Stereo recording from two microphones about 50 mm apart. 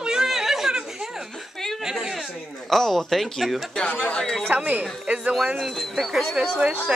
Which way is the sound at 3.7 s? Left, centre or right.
Left.